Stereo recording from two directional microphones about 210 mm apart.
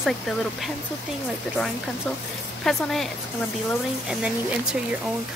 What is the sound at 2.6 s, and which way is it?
Speech, centre (ahead or behind).